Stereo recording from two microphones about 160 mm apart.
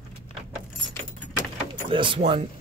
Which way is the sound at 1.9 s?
30° right (ahead or behind).